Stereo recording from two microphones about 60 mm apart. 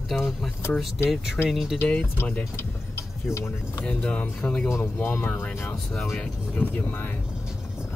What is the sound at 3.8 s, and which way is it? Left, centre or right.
Speech, centre.